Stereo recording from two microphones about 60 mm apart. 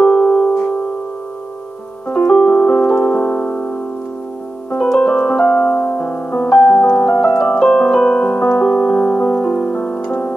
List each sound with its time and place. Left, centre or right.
0.1 s music: centre
2.1 s piano: centre; by 3.7 s left
4.7 s piano: centre
10.0 s music: centre